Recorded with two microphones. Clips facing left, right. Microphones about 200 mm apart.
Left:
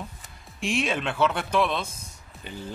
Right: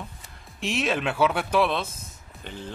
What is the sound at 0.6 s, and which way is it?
A man's voice, centre (ahead or behind).